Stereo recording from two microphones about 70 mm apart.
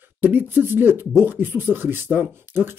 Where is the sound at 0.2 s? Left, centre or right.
Right.